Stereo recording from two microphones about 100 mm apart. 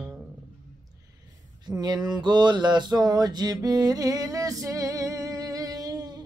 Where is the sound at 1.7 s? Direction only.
45° right (ahead or behind).